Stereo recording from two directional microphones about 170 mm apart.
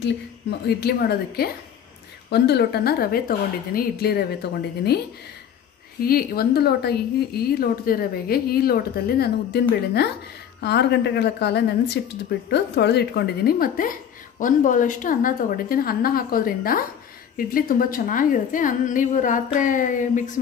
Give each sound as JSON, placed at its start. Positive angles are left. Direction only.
{"t": 0.0, "sound": "a woman's voice", "side_deg": 75}
{"t": 6.0, "sound": "a woman's voice", "side_deg": 60}
{"t": 10.6, "sound": "a woman's voice", "side_deg": 80}